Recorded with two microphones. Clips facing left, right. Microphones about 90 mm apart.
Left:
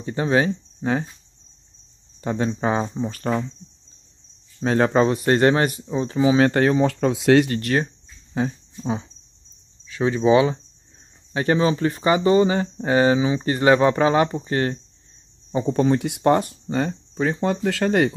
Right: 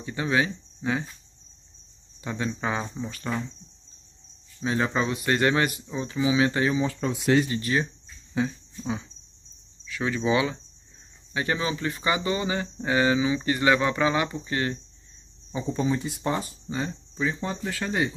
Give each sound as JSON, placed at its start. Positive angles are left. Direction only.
{"t": 0.0, "sound": "speech", "side_deg": 35}
{"t": 2.2, "sound": "speech", "side_deg": 40}
{"t": 4.6, "sound": "speech", "side_deg": 50}
{"t": 6.4, "sound": "speech", "side_deg": 55}
{"t": 7.5, "sound": "speech", "side_deg": 55}
{"t": 8.4, "sound": "cricket", "side_deg": 35}
{"t": 9.8, "sound": "speech", "side_deg": 30}
{"t": 15.5, "sound": "speech", "side_deg": 55}